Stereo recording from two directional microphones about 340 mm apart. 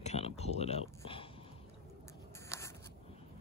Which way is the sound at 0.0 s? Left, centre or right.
Centre.